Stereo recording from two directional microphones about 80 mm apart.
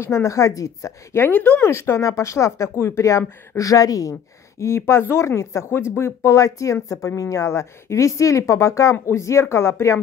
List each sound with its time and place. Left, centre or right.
0.0 s speech: left
1.7 s speech: left